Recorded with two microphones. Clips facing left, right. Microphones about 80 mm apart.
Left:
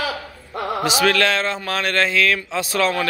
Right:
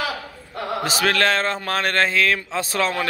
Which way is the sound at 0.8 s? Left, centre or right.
Right.